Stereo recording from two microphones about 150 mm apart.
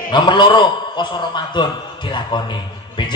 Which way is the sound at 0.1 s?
30° left (ahead or behind).